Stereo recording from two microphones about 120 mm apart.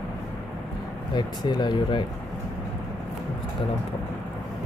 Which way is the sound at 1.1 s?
35° left (ahead or behind).